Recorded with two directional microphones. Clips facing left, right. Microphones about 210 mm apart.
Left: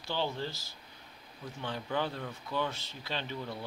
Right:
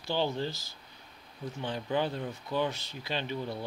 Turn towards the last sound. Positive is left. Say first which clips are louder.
# right 4 dB
turn(degrees=-15)  # may be behind; listen again after turning